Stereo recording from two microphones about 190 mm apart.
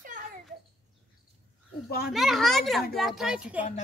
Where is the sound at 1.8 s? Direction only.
55° left (ahead or behind).